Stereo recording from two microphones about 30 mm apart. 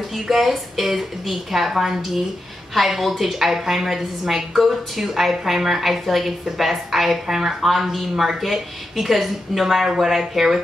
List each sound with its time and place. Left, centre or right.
0.1 s a woman's voice: centre